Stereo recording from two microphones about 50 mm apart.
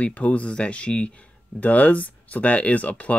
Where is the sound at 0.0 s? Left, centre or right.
Left.